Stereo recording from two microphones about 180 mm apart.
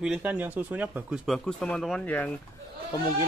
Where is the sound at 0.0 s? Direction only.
5° right (ahead or behind).